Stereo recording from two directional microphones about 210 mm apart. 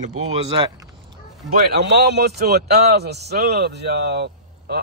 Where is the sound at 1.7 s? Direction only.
50° right (ahead or behind).